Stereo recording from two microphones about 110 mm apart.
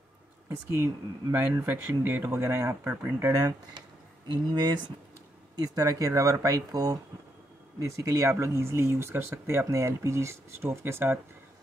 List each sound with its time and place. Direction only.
0.7 s speech: 20° right (ahead or behind)